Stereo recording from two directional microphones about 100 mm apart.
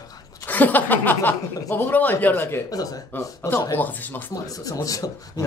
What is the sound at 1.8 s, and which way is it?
Speech, 20° left (ahead or behind).